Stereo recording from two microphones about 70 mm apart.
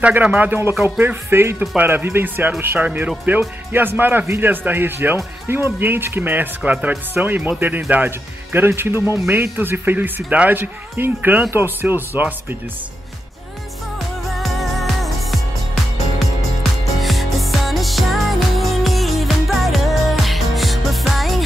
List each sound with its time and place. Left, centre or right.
0.1 s speech: right
13.9 s music: centre